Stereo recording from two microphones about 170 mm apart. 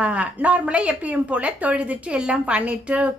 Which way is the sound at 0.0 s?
10° right (ahead or behind).